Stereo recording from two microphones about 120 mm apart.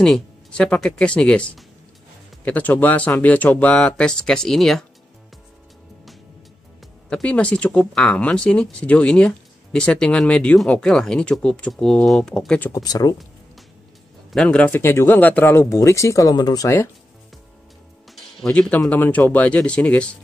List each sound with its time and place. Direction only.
0.0 s speech: 5° left (ahead or behind)
7.1 s speech: 10° left (ahead or behind)
12.7 s speech: 30° left (ahead or behind)
14.3 s speech: 5° left (ahead or behind)
14.8 s speech: 20° left (ahead or behind)
18.1 s speech: 5° left (ahead or behind)